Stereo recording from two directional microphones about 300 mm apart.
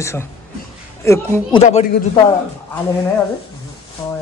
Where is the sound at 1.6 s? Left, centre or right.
Left.